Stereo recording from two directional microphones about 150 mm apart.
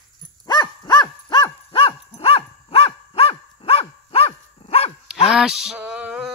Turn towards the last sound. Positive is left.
turn(degrees=-5)  # may be behind; listen again after turning